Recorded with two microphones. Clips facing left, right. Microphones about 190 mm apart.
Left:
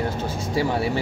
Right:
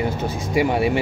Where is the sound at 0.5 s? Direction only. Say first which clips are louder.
Right 4 dB; 15° right (ahead or behind).